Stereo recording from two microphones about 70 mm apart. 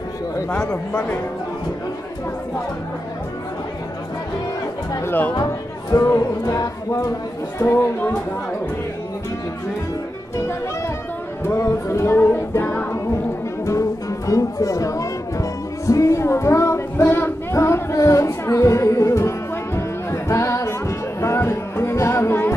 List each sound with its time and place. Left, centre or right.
0.5 s speech: centre
5.3 s speech: left
7.5 s music: left
11.4 s music: left
13.7 s speech: left
15.9 s female singing: left